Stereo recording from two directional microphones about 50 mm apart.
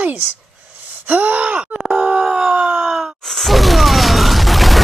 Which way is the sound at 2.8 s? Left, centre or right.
Centre.